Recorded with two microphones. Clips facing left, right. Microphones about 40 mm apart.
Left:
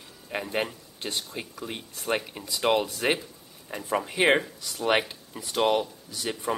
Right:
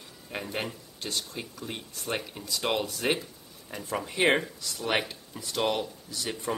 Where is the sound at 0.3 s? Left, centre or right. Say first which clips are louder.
Left 4 dB; centre.